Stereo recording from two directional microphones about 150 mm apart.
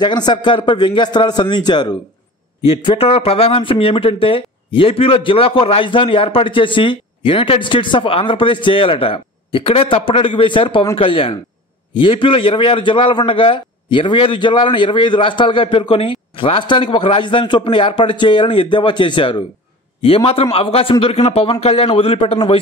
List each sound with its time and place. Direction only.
0.0 s a man's voice: 30° left (ahead or behind)